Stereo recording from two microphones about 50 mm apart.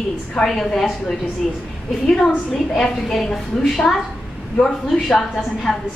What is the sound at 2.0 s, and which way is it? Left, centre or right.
Speech, centre.